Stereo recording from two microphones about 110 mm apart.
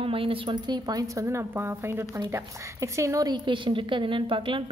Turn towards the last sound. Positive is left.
turn(degrees=-50)  # may be behind; listen again after turning